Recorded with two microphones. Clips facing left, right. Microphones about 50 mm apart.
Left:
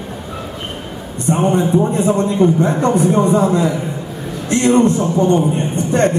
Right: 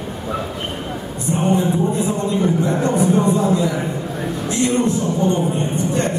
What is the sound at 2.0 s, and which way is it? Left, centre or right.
Speech, left.